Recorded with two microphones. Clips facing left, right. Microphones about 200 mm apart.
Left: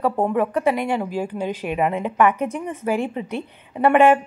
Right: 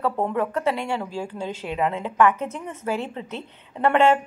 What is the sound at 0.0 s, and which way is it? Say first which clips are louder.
Speech: left 4 dB; 15° left (ahead or behind).